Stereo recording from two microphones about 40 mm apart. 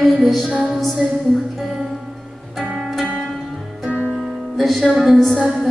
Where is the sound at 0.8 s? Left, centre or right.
Centre.